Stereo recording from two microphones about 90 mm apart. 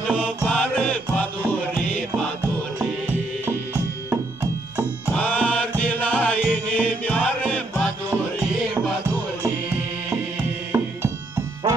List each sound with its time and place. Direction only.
0.2 s music: 10° left (ahead or behind)
3.7 s music: 20° right (ahead or behind)
5.1 s music: 15° left (ahead or behind)
10.7 s music: 25° right (ahead or behind)